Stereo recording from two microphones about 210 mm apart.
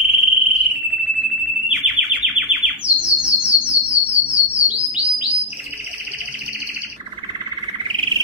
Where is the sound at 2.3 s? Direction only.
Centre (ahead or behind).